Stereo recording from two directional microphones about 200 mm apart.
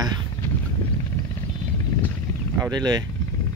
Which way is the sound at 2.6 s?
20° right (ahead or behind).